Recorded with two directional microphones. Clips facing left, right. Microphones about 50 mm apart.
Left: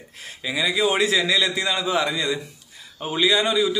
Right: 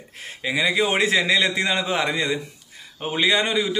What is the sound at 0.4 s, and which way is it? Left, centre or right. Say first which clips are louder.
A man's voice: right 1 dB; right.